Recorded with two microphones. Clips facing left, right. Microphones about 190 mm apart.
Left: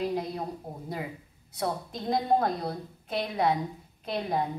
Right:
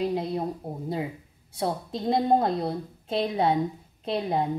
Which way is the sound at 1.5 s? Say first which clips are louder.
Right 3 dB; 30° right (ahead or behind).